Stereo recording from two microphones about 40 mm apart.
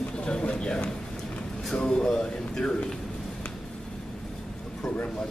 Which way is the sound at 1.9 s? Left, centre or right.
Centre.